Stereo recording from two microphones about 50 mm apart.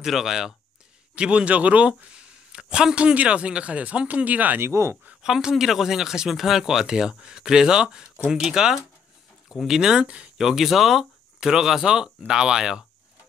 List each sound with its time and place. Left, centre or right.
0.0 s speech: centre
1.1 s speech: right
4.6 s speech: right
5.2 s speech: centre
10.0 s speech: right
10.3 s speech: centre